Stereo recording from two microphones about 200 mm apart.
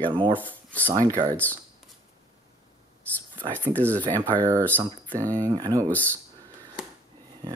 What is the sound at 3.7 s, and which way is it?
Speech, 10° left (ahead or behind).